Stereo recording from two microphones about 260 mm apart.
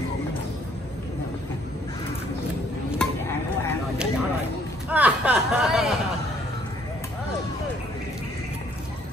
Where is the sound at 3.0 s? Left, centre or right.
Centre.